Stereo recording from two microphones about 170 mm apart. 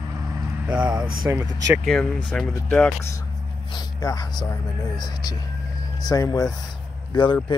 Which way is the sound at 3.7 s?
20° left (ahead or behind).